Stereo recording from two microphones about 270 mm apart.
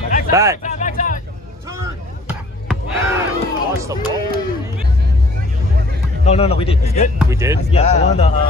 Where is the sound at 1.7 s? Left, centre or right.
Centre.